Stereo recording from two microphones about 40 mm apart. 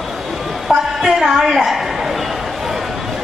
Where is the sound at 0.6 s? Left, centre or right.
Centre.